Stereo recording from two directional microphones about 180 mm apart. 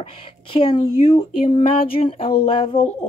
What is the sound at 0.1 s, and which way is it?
Speech, 30° left (ahead or behind).